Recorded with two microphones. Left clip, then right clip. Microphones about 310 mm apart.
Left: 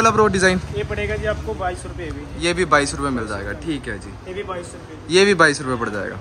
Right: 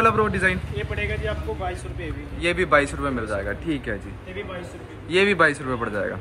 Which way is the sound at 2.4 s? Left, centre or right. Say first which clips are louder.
Left 2 dB; centre.